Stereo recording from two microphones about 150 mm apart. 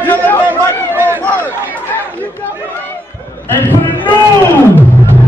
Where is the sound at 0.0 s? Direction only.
10° left (ahead or behind).